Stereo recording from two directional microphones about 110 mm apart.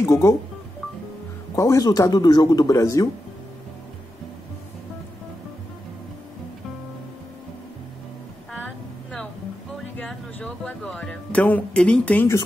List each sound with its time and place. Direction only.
0.0 s speech: 25° left (ahead or behind)
1.5 s speech: 30° left (ahead or behind)
8.5 s a sound: 10° left (ahead or behind)